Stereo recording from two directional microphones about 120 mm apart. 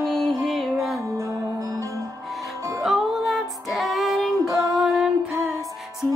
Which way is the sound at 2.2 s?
Centre (ahead or behind).